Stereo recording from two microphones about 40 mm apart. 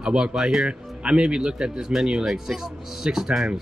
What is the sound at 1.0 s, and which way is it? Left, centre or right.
Speech, right.